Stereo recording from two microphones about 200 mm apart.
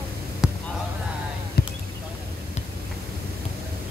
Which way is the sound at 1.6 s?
50° left (ahead or behind).